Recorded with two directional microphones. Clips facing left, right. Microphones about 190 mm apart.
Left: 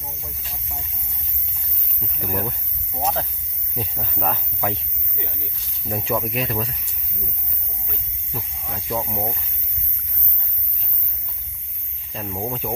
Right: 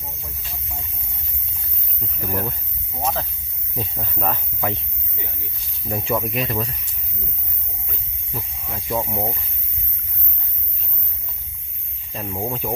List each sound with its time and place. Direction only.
2.2 s speech: 5° left (ahead or behind)
3.0 s speech: 25° left (ahead or behind)
3.7 s speech: 5° left (ahead or behind)
5.9 s speech: centre (ahead or behind)
8.3 s speech: 10° right (ahead or behind)
12.1 s speech: 5° right (ahead or behind)